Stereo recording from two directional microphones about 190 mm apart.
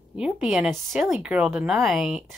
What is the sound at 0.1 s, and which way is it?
Speech, 5° right (ahead or behind).